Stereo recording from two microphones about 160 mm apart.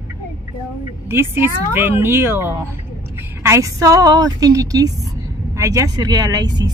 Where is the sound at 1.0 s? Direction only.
15° right (ahead or behind).